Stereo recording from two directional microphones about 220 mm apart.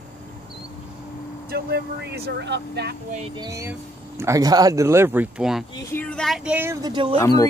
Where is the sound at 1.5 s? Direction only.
45° right (ahead or behind).